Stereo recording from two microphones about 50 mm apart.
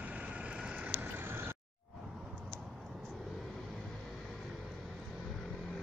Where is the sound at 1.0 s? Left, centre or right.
Right.